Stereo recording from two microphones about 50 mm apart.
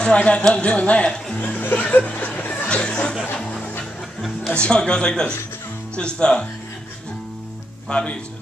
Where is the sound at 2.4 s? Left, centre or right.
Left.